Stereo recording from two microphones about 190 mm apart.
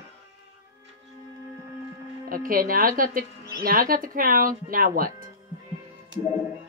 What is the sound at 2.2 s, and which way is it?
Speech, 50° right (ahead or behind).